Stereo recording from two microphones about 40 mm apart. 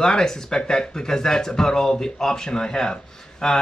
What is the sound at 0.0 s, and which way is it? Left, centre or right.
Speech, centre.